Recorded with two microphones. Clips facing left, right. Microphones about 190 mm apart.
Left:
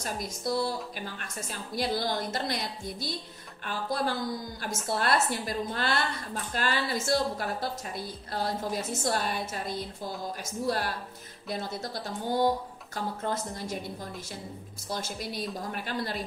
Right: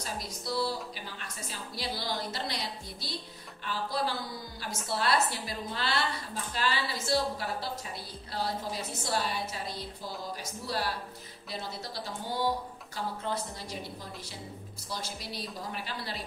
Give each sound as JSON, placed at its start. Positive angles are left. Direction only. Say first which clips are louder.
{"t": 0.0, "sound": "a woman's voice", "louder": "left 5 dB", "side_deg": 50}
{"t": 14.9, "sound": "a woman's voice", "louder": "left 5 dB", "side_deg": 50}